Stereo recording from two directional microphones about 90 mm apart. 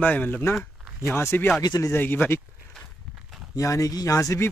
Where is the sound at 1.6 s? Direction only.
45° left (ahead or behind).